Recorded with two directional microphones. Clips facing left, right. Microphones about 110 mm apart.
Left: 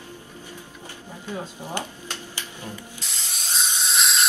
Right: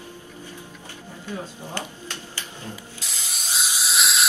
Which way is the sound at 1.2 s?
15° left (ahead or behind).